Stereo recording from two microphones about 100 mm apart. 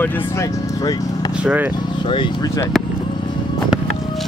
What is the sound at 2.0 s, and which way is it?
Speech, 55° left (ahead or behind).